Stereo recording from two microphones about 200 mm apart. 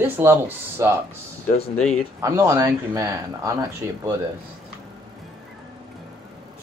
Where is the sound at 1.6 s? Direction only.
35° left (ahead or behind).